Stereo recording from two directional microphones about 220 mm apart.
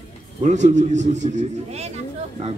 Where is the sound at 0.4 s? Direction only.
30° right (ahead or behind).